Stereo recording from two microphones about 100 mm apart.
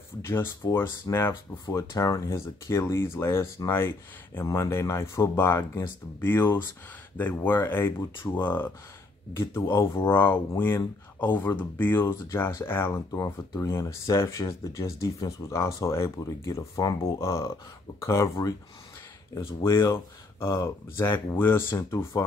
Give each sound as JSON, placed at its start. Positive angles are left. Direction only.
{"t": 0.2, "sound": "speech", "side_deg": 25}
{"t": 19.7, "sound": "speech", "side_deg": 30}